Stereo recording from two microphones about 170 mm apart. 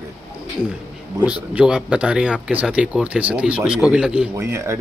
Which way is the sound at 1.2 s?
5° right (ahead or behind).